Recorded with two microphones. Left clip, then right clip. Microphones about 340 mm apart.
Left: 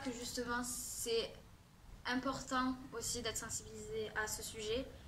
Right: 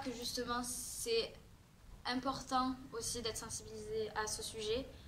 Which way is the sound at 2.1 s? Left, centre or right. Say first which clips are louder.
Right 1 dB; centre.